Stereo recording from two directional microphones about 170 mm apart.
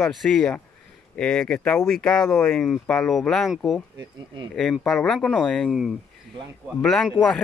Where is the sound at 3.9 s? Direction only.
25° right (ahead or behind).